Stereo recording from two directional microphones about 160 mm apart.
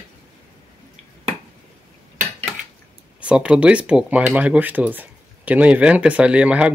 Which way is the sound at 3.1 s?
5° right (ahead or behind).